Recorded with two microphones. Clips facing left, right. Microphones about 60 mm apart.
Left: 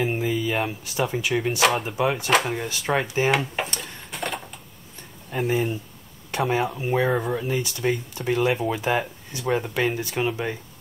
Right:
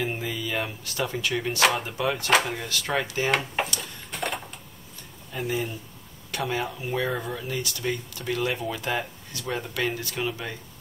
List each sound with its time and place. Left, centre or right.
0.0 s speech: left
3.3 s speech: centre
4.1 s a sound: centre
5.3 s speech: left